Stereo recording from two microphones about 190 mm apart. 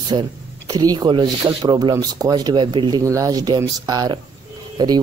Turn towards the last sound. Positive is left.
turn(degrees=-20)  # may be behind; listen again after turning